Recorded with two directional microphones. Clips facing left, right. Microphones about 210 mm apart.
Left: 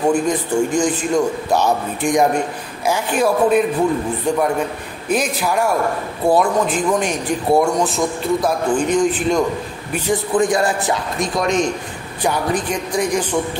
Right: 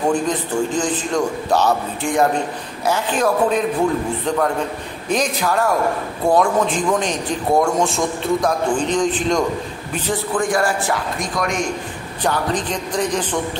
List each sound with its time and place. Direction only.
0.1 s a man's voice: 10° left (ahead or behind)
5.1 s a man's voice: 10° left (ahead or behind)
12.2 s a man's voice: 10° left (ahead or behind)